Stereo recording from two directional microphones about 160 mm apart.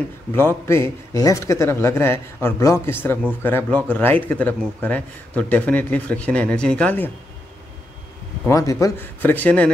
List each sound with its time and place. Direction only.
0.3 s a man's voice: 15° left (ahead or behind)
8.5 s a man's voice: 20° left (ahead or behind)